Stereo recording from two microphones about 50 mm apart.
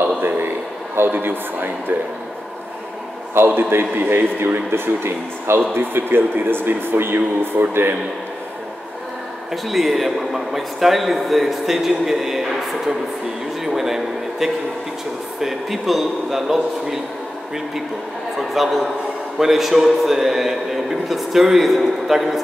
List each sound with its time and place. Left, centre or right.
0.2 s a man's voice: right
3.4 s a man's voice: right
7.2 s speech: right
9.5 s a man's voice: centre
18.5 s a man's voice: centre